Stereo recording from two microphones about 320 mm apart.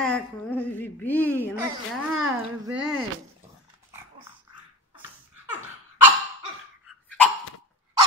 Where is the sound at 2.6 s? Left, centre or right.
Centre.